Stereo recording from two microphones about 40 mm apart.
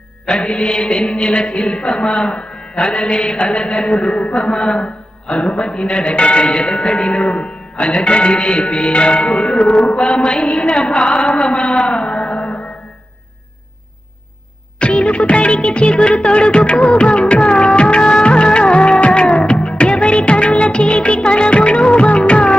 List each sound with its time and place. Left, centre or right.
0.3 s speech: left
11.1 s music: left
14.8 s music of bollywood: left